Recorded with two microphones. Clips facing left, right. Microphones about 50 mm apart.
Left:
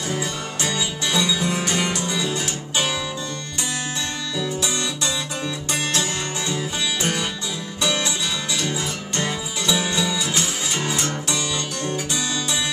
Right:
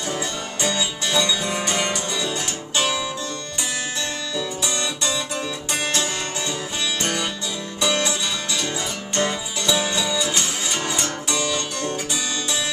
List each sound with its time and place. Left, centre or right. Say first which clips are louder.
0.1 s music: left 1 dB; centre
4.4 s music: left 2 dB; centre